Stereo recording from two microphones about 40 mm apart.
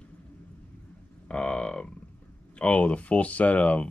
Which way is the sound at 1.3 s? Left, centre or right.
Left.